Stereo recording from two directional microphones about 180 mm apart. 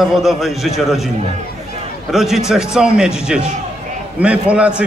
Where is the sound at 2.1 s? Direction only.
Centre (ahead or behind).